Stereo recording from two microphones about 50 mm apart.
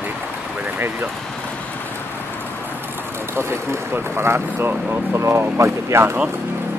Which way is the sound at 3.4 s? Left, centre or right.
Right.